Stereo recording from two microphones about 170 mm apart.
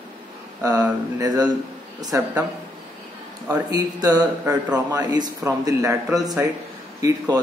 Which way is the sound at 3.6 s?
20° right (ahead or behind).